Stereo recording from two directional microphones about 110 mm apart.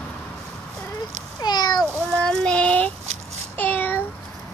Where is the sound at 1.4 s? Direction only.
40° left (ahead or behind).